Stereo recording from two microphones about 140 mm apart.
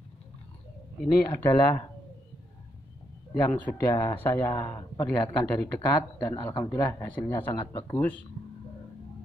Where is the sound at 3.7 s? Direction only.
20° left (ahead or behind).